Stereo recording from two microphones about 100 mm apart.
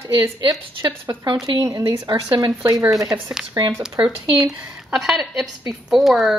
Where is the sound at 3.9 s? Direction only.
55° right (ahead or behind).